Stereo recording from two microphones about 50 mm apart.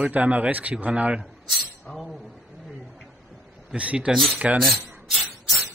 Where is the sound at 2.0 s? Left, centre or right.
Centre.